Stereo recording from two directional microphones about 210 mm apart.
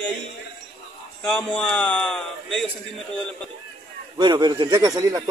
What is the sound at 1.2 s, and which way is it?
A man's voice, 5° left (ahead or behind).